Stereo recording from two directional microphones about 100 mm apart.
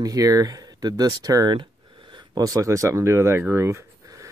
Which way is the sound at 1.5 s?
50° right (ahead or behind).